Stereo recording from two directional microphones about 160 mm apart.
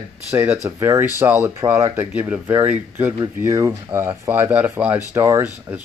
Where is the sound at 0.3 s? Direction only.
10° right (ahead or behind).